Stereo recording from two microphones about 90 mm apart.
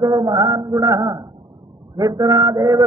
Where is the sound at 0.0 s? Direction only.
45° right (ahead or behind).